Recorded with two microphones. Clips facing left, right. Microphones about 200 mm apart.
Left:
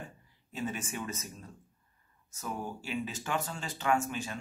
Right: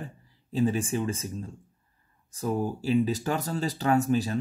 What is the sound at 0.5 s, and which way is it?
Speech, 35° right (ahead or behind).